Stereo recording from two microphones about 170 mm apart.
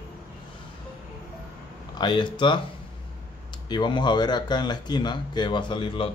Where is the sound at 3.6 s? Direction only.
25° left (ahead or behind).